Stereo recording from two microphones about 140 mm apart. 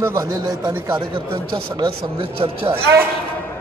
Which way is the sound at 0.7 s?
15° right (ahead or behind).